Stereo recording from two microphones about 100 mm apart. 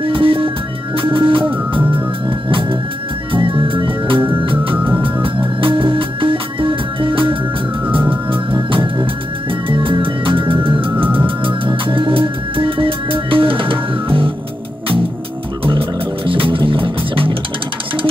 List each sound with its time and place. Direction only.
0.0 s music: 65° right (ahead or behind)
4.7 s music: 15° right (ahead or behind)
5.0 s music: 60° right (ahead or behind)
16.3 s music: 60° right (ahead or behind)